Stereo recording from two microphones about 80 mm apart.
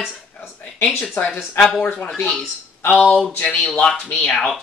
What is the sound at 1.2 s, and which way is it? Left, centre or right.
Speech, left.